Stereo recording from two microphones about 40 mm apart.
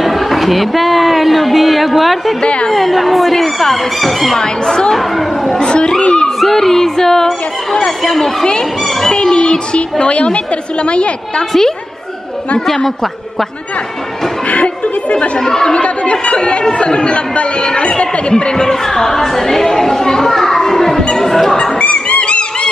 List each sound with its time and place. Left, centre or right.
0.0 s speech: centre
2.4 s a woman's voice: left
2.7 s speech: centre
4.4 s speech: centre
4.9 s chatter: centre
5.6 s a sound: left
6.4 s speech: centre
8.8 s a sound: centre
9.1 s a woman's voice: left
12.5 s speech: centre
14.5 s chatter: left
15.3 s a woman's voice: centre
21.2 s music: centre
21.5 s a sound: left